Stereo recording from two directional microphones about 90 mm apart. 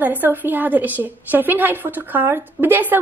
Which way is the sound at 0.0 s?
20° right (ahead or behind).